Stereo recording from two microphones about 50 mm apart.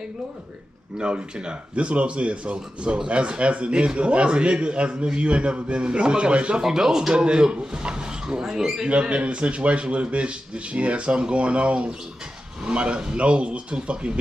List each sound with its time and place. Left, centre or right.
0.9 s speech: centre
8.9 s speech: right